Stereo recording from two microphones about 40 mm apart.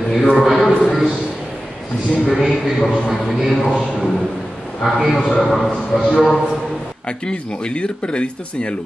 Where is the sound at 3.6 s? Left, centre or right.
Centre.